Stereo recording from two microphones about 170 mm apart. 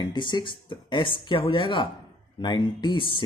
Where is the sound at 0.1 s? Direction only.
30° left (ahead or behind).